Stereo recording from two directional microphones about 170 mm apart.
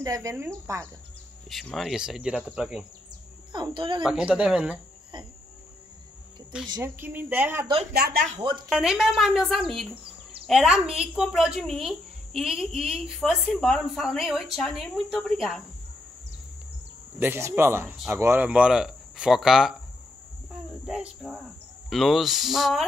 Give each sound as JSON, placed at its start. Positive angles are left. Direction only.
{"t": 0.0, "sound": "a woman's voice", "side_deg": -20}
{"t": 1.5, "sound": "speech", "side_deg": 0}
{"t": 3.5, "sound": "speech", "side_deg": -30}
{"t": 4.0, "sound": "speech", "side_deg": -5}
{"t": 6.7, "sound": "a woman's voice", "side_deg": -15}
{"t": 7.9, "sound": "speech", "side_deg": -60}
{"t": 8.4, "sound": "speech", "side_deg": -30}
{"t": 8.6, "sound": "speech", "side_deg": -5}
{"t": 17.2, "sound": "a woman's voice", "side_deg": -15}
{"t": 20.8, "sound": "cricket", "side_deg": -5}
{"t": 21.8, "sound": "speech", "side_deg": 0}